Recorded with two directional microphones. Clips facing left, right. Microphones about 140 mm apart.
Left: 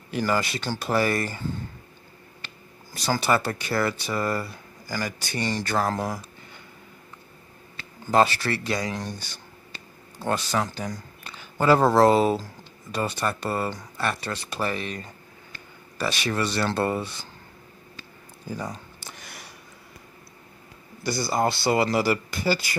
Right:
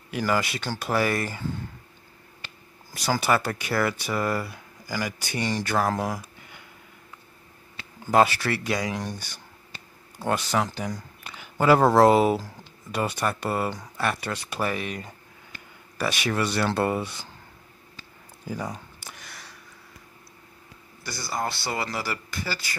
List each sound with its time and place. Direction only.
0.1 s speech: 5° right (ahead or behind)
2.4 s speech: 10° right (ahead or behind)
7.7 s speech: 10° right (ahead or behind)
10.1 s speech: 15° right (ahead or behind)
18.5 s a sound: 10° right (ahead or behind)
19.1 s a sound: 10° left (ahead or behind)
21.0 s speech: 25° left (ahead or behind)